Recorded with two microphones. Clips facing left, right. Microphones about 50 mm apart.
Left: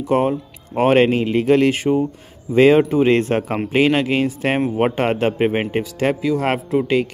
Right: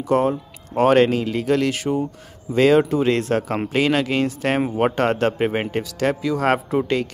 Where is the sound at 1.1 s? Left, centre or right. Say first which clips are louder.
Left 4 dB; left.